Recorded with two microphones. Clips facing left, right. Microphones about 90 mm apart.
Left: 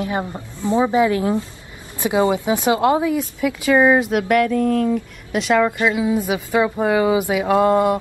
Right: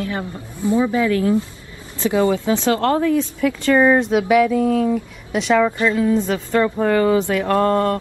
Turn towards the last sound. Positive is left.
turn(degrees=15)  # may be behind; listen again after turning